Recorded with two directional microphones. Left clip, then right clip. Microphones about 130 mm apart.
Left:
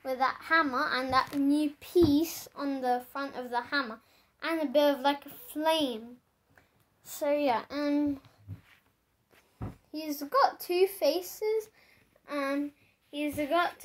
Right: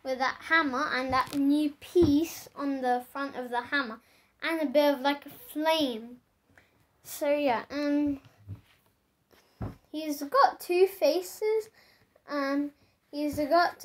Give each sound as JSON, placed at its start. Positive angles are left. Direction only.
{"t": 0.0, "sound": "a child's voice", "side_deg": 10}
{"t": 1.4, "sound": "a child's voice", "side_deg": 30}
{"t": 7.1, "sound": "a woman's voice", "side_deg": -15}
{"t": 7.3, "sound": "speech", "side_deg": 0}
{"t": 9.8, "sound": "a child's voice", "side_deg": 5}
{"t": 12.3, "sound": "speech", "side_deg": -5}
{"t": 13.2, "sound": "a child's voice", "side_deg": 10}